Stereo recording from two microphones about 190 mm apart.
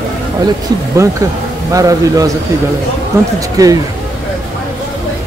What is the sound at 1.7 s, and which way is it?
A man's voice, 20° right (ahead or behind).